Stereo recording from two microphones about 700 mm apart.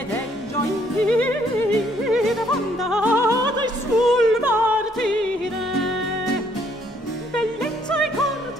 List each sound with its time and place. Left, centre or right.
1.0 s music: centre
7.3 s music: centre